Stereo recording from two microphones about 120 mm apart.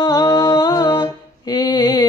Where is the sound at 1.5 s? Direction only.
35° left (ahead or behind).